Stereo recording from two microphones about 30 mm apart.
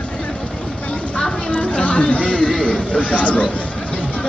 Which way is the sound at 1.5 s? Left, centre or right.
Left.